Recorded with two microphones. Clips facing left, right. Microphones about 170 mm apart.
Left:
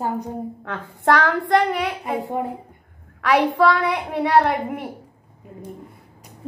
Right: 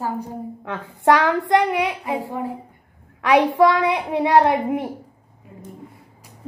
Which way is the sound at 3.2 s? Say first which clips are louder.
Right 2 dB; 20° right (ahead or behind).